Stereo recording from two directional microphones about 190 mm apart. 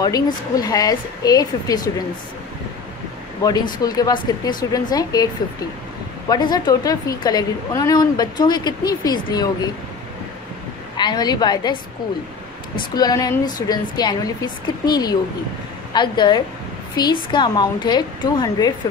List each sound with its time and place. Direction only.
0.0 s a woman's voice: 20° left (ahead or behind)
3.4 s a woman's voice: 20° left (ahead or behind)
11.0 s a woman's voice: 20° left (ahead or behind)
12.9 s a woman's voice: 20° left (ahead or behind)